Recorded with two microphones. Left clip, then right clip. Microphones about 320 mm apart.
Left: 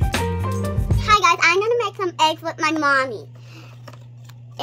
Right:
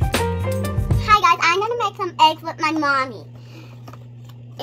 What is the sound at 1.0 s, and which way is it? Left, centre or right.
Music, centre.